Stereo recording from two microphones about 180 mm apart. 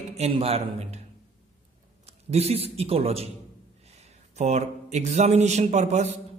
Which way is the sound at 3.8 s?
35° right (ahead or behind).